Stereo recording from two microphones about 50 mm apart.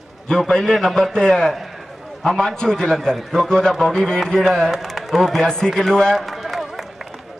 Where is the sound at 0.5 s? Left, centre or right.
Centre.